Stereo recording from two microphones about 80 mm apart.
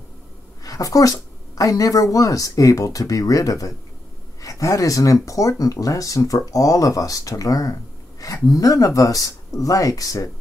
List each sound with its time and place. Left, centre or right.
0.7 s speech: left